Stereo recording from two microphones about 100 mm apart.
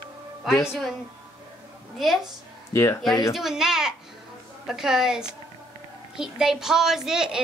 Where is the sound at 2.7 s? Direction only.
30° left (ahead or behind).